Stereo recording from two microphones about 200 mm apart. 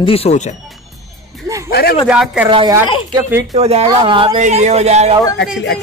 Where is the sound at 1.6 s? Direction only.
50° left (ahead or behind).